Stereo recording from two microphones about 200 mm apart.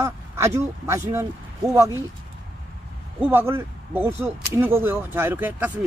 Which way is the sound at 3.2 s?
10° right (ahead or behind).